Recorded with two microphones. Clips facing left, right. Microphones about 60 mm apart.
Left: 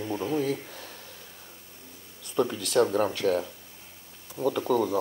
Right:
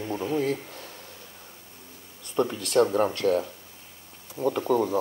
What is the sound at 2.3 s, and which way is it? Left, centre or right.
Speech, right.